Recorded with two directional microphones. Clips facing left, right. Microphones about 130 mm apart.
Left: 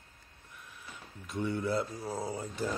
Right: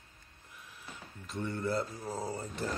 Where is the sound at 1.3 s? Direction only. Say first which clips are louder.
Left 2 dB; 5° left (ahead or behind).